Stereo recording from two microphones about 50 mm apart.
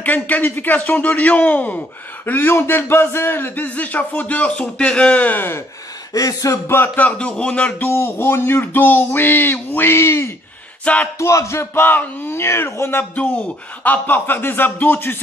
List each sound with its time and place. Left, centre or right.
0.0 s speech: left
2.2 s a sound: left
3.6 s speech: left
6.4 s speech: left
7.0 s speech: left
7.8 s a sound: left
11.1 s music: left
11.8 s speech: left
12.4 s speech: left
13.8 s speech: left